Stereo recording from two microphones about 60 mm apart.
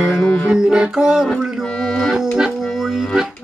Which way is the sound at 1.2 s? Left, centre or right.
Centre.